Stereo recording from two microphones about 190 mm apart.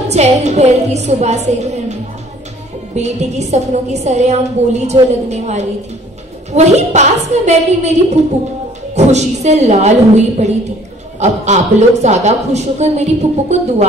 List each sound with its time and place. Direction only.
0.1 s a woman's voice: 35° right (ahead or behind)
3.0 s a woman's voice: 35° right (ahead or behind)